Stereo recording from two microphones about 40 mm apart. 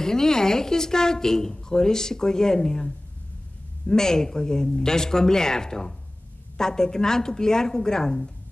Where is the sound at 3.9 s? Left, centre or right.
Centre.